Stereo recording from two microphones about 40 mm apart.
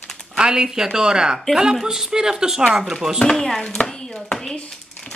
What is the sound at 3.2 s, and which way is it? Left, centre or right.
Speech, centre.